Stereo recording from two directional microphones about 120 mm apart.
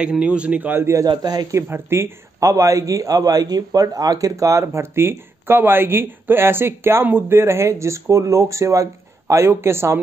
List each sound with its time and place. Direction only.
0.0 s speech: 10° right (ahead or behind)
0.9 s a man's voice: 35° right (ahead or behind)
1.7 s a man's voice: 20° right (ahead or behind)